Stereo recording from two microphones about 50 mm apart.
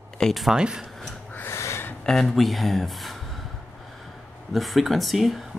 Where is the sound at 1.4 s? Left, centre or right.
Left.